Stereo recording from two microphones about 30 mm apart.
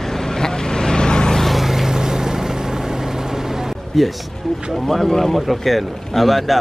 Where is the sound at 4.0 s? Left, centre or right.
Centre.